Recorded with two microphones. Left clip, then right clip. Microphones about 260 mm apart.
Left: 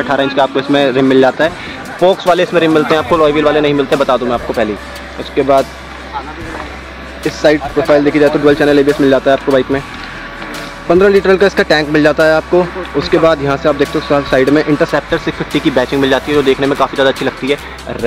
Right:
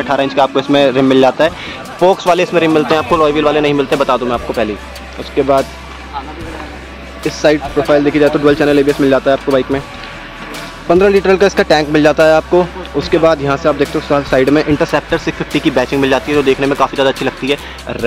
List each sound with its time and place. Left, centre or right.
0.0 s speech: centre
7.2 s speech: centre
10.9 s speech: centre